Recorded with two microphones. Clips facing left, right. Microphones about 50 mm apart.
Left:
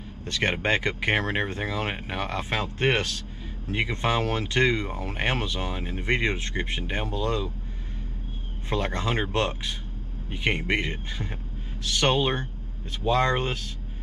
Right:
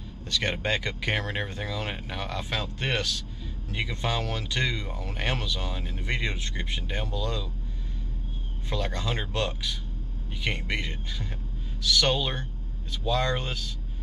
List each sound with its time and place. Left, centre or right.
0.2 s speech: left
8.6 s speech: left